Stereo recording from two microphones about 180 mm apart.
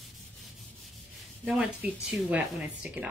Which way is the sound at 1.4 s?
5° right (ahead or behind).